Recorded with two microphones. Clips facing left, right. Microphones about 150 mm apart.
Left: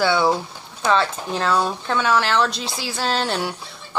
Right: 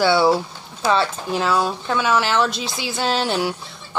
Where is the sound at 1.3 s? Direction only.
5° right (ahead or behind).